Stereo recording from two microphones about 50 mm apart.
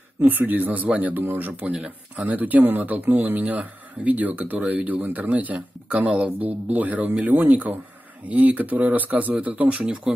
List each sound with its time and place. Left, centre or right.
0.2 s speech: right